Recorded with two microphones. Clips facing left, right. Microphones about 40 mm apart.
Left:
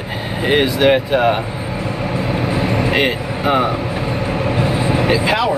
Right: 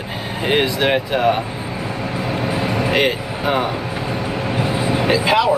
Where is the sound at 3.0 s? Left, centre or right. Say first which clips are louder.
Left 1 dB; centre.